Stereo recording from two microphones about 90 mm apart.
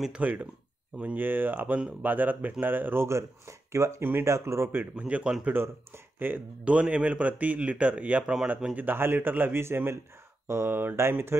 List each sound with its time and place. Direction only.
0.0 s speech: 15° right (ahead or behind)
4.9 s speech: 15° right (ahead or behind)
8.8 s speech: 25° right (ahead or behind)